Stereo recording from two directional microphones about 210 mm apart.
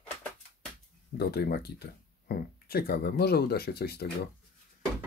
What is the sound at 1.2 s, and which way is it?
Speech, 50° left (ahead or behind).